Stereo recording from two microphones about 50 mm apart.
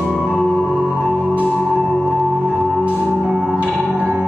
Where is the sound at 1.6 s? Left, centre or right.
Right.